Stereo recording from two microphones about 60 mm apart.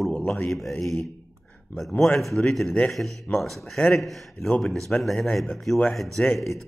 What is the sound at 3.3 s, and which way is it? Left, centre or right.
Speech, centre.